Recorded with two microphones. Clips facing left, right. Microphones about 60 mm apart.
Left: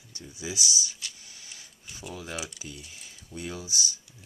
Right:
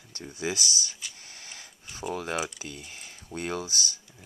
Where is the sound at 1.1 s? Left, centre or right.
Right.